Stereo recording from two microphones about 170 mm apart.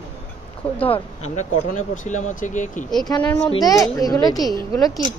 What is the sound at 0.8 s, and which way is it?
Speech, 40° left (ahead or behind).